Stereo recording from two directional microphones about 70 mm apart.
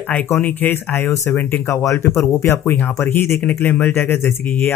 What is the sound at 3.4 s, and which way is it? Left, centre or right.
Speech, left.